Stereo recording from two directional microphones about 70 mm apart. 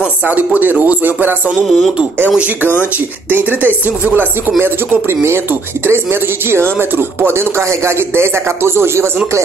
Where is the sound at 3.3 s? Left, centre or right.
Right.